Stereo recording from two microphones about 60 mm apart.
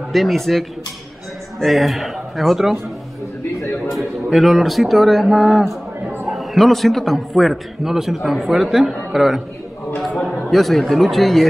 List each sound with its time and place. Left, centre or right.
0.1 s a man's voice: centre
3.9 s a man's voice: centre